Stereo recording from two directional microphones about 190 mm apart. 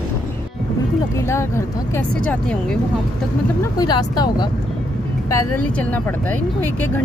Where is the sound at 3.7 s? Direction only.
20° left (ahead or behind).